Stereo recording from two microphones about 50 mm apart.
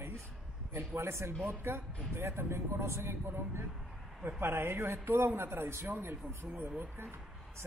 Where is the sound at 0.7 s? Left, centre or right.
Right.